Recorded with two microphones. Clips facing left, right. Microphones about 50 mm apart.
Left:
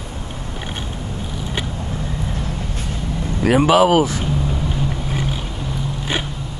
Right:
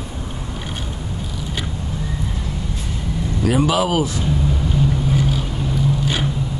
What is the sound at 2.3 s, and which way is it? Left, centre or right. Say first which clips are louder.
Vehicle: left 1 dB; left.